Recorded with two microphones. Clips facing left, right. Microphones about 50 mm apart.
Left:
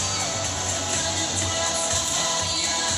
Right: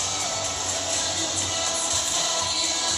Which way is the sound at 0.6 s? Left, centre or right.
Left.